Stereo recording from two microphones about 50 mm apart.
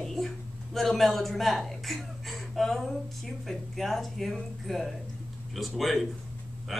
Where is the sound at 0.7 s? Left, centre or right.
Centre.